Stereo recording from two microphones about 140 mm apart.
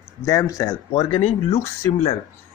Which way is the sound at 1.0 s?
40° left (ahead or behind).